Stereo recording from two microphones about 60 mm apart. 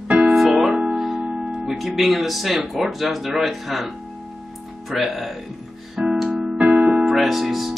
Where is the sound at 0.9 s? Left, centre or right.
Centre.